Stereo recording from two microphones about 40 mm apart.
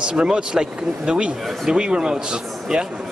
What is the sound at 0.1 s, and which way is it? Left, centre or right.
A man's voice, right.